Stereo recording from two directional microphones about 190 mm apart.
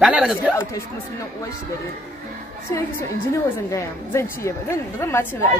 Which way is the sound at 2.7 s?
15° left (ahead or behind).